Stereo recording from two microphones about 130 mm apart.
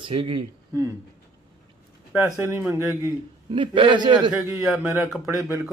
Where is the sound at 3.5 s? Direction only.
40° right (ahead or behind).